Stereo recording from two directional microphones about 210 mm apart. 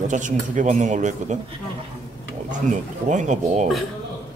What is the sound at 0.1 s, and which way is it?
Speech, 35° right (ahead or behind).